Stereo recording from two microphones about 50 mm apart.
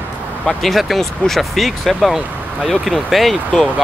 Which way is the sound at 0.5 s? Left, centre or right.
Centre.